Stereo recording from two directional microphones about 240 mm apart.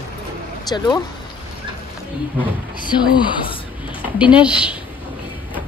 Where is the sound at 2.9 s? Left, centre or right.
Centre.